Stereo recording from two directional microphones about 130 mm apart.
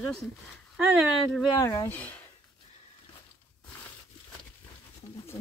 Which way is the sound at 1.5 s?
25° left (ahead or behind).